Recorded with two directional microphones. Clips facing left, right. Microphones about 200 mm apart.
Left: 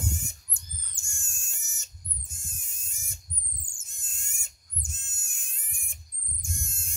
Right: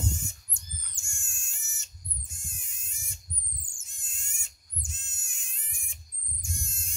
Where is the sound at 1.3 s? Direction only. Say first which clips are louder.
Left 1 dB; 45° left (ahead or behind).